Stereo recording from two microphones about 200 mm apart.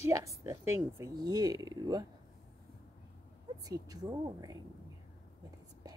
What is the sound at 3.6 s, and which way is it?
Speech, 15° right (ahead or behind).